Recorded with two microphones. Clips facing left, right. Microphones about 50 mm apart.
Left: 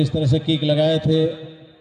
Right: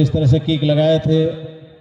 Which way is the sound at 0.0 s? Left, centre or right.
Right.